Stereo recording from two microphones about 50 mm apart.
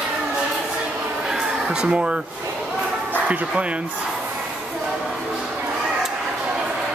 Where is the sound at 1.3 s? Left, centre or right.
Centre.